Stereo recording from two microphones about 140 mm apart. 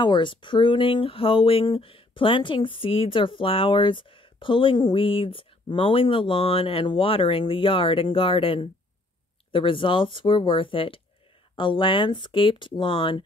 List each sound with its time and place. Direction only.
0.0 s speech: 35° left (ahead or behind)